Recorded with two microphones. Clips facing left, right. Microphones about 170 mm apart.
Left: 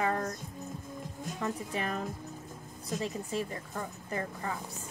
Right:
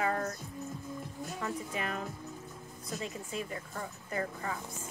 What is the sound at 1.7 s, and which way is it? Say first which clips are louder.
Speech: left 2 dB; 35° left (ahead or behind).